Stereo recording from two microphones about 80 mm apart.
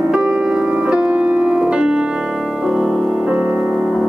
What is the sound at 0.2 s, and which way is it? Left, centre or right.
Keyboard, centre.